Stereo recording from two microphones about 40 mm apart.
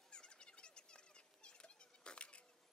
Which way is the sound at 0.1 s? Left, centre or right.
Left.